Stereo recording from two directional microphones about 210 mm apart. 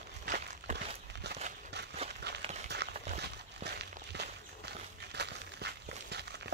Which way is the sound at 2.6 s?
55° right (ahead or behind).